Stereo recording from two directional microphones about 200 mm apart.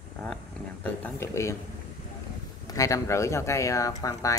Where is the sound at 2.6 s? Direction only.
15° left (ahead or behind).